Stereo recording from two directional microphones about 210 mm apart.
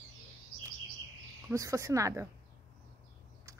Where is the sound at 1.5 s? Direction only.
15° right (ahead or behind).